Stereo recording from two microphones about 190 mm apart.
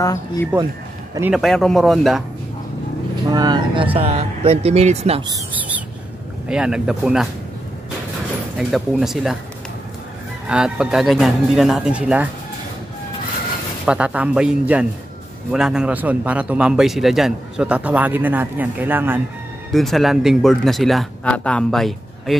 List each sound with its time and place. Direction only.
0.0 s speech: 20° left (ahead or behind)
1.3 s speech: centre (ahead or behind)
3.3 s speech: 20° right (ahead or behind)
5.3 s speech: 10° right (ahead or behind)
8.5 s speech: centre (ahead or behind)
10.4 s speech: 5° right (ahead or behind)
13.8 s a man's voice: 5° right (ahead or behind)
19.7 s speech: centre (ahead or behind)